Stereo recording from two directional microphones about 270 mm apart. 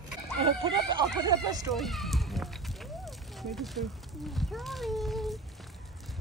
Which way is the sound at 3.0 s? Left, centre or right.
Centre.